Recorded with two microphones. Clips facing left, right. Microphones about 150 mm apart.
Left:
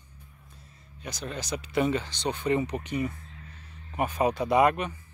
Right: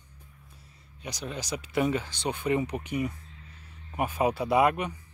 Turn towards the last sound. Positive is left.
turn(degrees=-10)  # may be behind; listen again after turning